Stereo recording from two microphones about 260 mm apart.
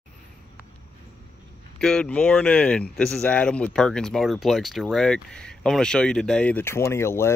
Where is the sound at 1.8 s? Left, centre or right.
Centre.